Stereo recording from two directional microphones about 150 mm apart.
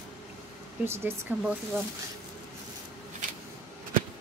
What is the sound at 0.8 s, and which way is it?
Speech, 15° right (ahead or behind).